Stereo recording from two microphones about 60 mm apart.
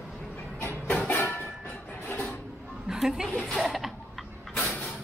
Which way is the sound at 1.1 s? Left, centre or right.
Left.